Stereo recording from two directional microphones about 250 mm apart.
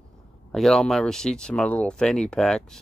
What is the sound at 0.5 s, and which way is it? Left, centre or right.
Speech, centre.